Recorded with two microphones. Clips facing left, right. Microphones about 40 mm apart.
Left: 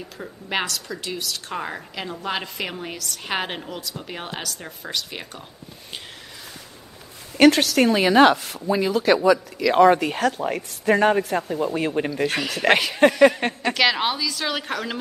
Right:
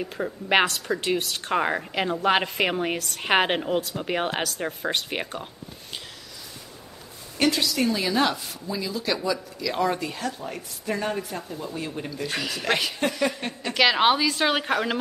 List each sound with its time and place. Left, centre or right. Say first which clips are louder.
0.5 s a woman's voice: right 5 dB; right
7.3 s speech: left 8 dB; left
12.4 s speech: left 6 dB; left
13.4 s a woman's voice: left 7 dB; left
14.0 s speech: right 4 dB; right
14.6 s speech: right 3 dB; centre